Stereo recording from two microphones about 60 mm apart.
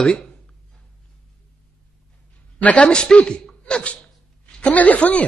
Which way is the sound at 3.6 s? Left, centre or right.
Centre.